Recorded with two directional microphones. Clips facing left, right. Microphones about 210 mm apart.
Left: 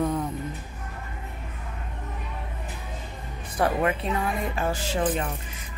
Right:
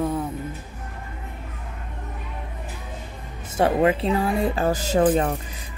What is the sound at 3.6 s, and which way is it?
Speech, 25° right (ahead or behind).